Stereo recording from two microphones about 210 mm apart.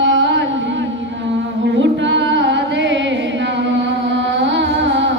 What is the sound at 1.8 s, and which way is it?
Music, 60° right (ahead or behind).